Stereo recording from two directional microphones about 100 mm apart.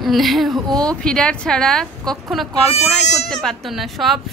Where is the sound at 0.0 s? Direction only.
Centre (ahead or behind).